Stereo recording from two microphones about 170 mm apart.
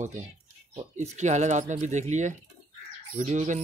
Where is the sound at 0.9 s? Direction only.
45° right (ahead or behind).